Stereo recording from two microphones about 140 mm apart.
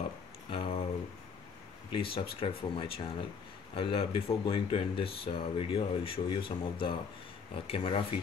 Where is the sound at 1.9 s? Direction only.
40° left (ahead or behind).